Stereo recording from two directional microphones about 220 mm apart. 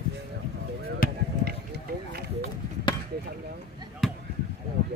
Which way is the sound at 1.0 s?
40° left (ahead or behind).